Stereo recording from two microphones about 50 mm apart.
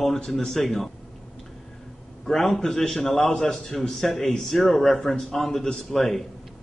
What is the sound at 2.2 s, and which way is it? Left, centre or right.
A man's voice, centre.